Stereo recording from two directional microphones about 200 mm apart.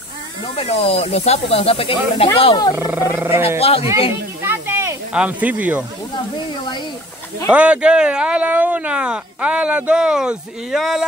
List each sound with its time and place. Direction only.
0.6 s speech: 30° left (ahead or behind)
2.7 s speech: 10° right (ahead or behind)
3.4 s speech: 30° left (ahead or behind)
4.4 s snake: 10° right (ahead or behind)
7.5 s speech: 5° right (ahead or behind)